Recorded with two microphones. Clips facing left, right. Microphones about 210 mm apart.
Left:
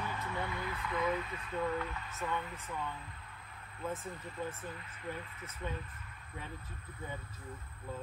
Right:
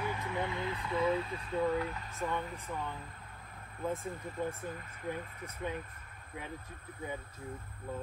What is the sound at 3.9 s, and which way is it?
Speech, 50° right (ahead or behind).